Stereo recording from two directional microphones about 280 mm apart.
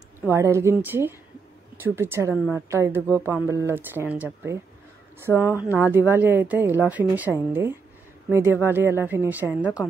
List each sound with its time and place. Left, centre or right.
0.2 s a woman's voice: centre
5.7 s a woman's voice: centre